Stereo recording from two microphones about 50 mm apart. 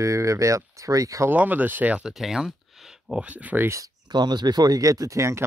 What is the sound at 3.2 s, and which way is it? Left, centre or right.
Speech, right.